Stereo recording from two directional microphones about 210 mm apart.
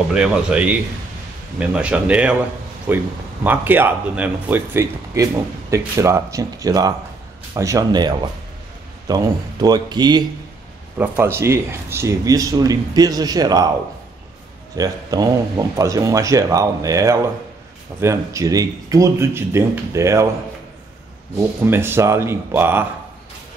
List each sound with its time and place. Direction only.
0.1 s speech: 5° right (ahead or behind)
14.8 s speech: 20° right (ahead or behind)
21.4 s speech: 10° right (ahead or behind)